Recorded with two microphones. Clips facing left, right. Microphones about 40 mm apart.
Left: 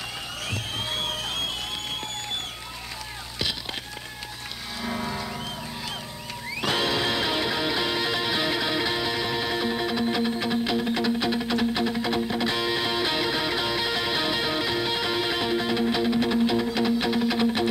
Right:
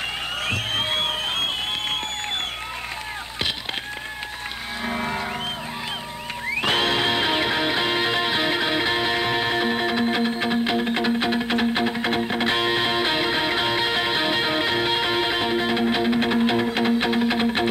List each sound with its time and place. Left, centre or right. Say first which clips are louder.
0.5 s music: right 6 dB; right
6.5 s music: right 4 dB; right